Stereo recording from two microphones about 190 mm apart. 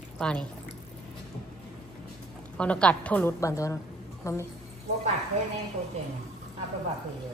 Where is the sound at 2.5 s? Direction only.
5° left (ahead or behind).